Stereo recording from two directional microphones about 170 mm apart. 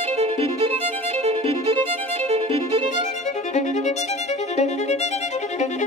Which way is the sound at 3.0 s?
45° left (ahead or behind).